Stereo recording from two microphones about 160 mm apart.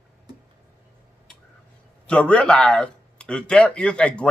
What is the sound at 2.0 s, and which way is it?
Speech, 5° left (ahead or behind).